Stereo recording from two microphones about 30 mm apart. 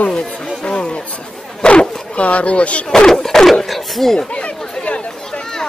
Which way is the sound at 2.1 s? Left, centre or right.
Left.